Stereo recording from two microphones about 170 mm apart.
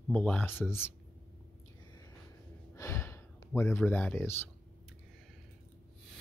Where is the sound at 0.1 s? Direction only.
5° left (ahead or behind).